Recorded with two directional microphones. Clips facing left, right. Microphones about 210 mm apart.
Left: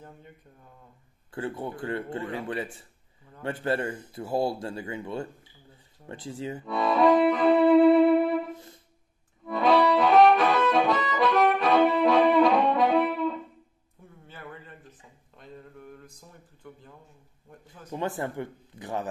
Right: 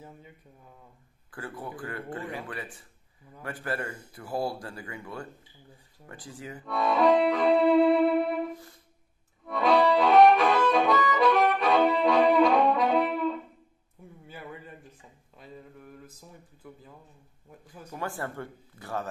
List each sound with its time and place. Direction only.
1.3 s speech: 25° left (ahead or behind)
6.6 s music: centre (ahead or behind)
9.5 s music: centre (ahead or behind)
14.2 s a man's voice: 10° right (ahead or behind)
17.9 s speech: 20° left (ahead or behind)